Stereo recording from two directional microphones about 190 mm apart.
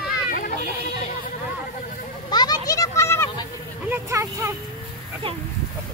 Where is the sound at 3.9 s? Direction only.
15° right (ahead or behind).